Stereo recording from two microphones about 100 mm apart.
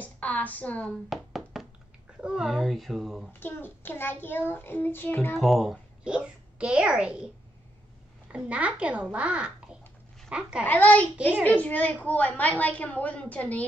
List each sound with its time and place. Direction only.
0.0 s speech: 15° left (ahead or behind)
1.1 s a sound: centre (ahead or behind)
2.2 s speech: 5° right (ahead or behind)
3.3 s child singing: 20° left (ahead or behind)
5.4 s a child's voice: centre (ahead or behind)
8.3 s a child's voice: 10° right (ahead or behind)
10.7 s a woman's voice: 15° left (ahead or behind)